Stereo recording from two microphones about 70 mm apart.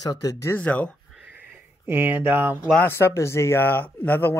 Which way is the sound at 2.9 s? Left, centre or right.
Left.